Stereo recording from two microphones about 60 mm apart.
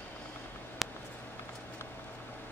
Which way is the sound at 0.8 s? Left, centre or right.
Centre.